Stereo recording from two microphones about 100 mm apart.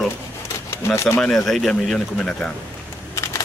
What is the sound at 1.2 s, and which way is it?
Speech, 5° left (ahead or behind).